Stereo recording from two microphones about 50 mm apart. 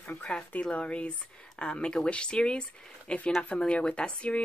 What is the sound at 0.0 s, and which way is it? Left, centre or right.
Speech, left.